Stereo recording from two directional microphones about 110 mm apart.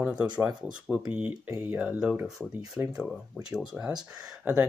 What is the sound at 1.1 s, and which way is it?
Speech, 15° right (ahead or behind).